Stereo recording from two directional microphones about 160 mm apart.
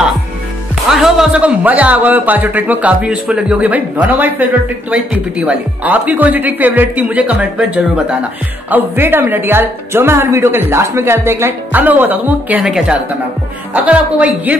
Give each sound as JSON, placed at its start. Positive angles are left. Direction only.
{"t": 0.9, "sound": "a woman's voice", "side_deg": -5}
{"t": 5.5, "sound": "a woman's voice", "side_deg": -10}